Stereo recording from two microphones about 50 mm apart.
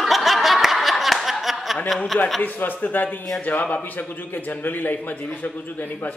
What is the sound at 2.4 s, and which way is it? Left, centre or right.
Speech, left.